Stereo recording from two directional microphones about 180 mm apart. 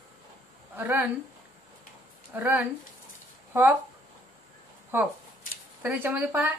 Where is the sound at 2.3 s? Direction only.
10° right (ahead or behind).